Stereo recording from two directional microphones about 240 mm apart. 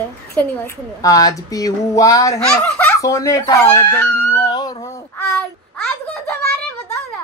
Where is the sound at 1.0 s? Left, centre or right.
Centre.